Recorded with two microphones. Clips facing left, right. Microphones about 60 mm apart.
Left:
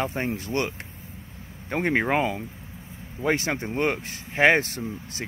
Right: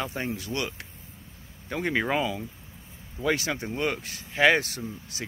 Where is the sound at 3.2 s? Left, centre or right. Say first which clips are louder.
Left 2 dB; left.